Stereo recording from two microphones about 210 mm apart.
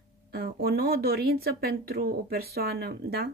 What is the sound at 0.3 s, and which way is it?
Speech, 45° right (ahead or behind).